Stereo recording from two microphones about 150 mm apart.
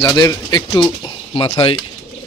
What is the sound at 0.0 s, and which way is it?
Speech, 25° left (ahead or behind).